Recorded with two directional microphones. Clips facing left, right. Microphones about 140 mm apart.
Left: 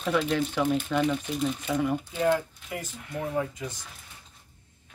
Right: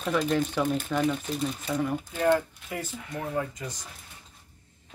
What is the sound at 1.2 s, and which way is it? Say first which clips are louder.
Speech: left 2 dB; 40° right (ahead or behind).